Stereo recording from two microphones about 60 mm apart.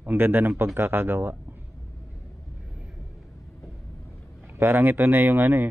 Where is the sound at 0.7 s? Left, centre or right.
Right.